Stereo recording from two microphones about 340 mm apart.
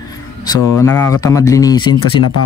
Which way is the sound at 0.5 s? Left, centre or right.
Centre.